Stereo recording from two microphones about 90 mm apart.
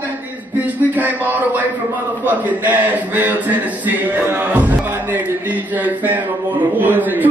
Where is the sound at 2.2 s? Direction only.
20° right (ahead or behind).